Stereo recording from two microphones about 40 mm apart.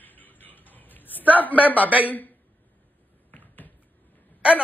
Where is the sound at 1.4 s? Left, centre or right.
Left.